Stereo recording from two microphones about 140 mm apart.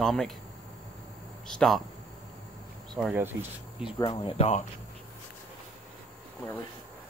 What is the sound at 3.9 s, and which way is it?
Speech, 30° left (ahead or behind).